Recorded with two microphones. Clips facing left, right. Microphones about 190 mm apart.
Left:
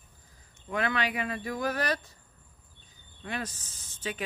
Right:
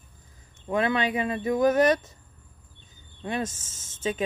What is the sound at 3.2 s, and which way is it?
Speech, 25° right (ahead or behind).